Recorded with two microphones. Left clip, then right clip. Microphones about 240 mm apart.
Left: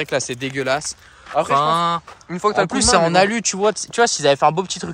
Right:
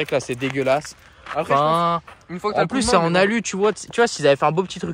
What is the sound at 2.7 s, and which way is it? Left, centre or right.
Speech, centre.